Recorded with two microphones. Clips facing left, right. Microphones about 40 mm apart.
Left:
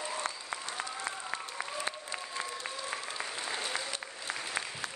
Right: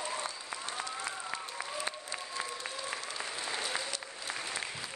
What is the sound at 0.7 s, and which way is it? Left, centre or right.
Applause, centre.